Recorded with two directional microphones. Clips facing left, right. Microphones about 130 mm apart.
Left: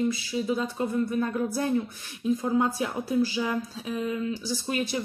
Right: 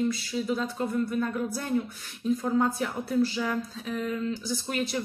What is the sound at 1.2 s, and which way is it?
Speech, 30° left (ahead or behind).